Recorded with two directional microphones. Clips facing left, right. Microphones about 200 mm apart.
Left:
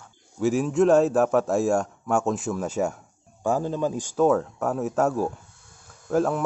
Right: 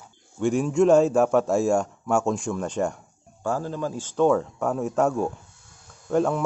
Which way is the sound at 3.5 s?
20° left (ahead or behind).